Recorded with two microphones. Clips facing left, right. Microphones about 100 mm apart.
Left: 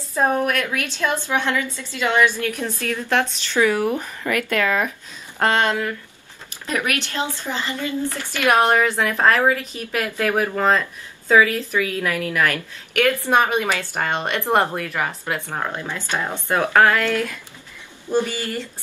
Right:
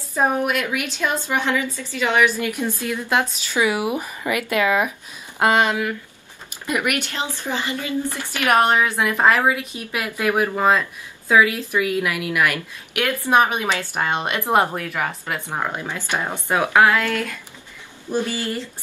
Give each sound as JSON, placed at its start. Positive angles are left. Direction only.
{"t": 0.1, "sound": "a woman's voice", "side_deg": -15}